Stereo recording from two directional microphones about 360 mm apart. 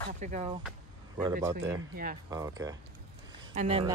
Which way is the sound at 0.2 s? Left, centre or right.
Centre.